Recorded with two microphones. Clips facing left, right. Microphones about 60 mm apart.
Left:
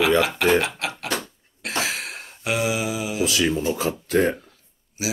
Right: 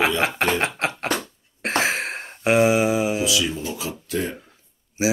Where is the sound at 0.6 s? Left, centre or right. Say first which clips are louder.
Right 3 dB; right.